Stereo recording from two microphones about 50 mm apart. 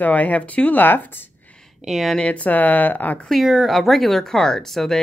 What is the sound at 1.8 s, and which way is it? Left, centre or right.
Speech, centre.